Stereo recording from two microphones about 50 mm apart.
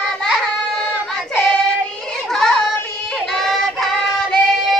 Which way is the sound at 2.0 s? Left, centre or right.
Centre.